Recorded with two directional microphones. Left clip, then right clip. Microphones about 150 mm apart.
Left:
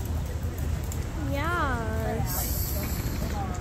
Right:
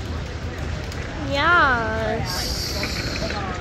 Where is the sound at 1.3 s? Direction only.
10° left (ahead or behind).